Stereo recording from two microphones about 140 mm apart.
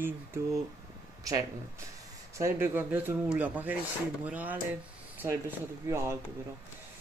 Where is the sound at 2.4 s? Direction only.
15° right (ahead or behind).